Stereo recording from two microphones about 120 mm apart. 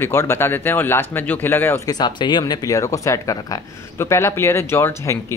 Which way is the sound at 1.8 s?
35° left (ahead or behind).